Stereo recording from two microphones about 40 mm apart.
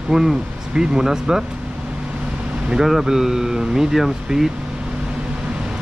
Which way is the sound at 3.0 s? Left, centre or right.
Centre.